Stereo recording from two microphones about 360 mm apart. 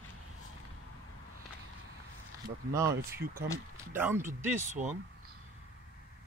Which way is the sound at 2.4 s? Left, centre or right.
Centre.